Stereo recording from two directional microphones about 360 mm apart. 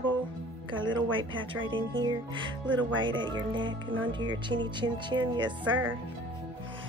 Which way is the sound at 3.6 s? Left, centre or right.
Right.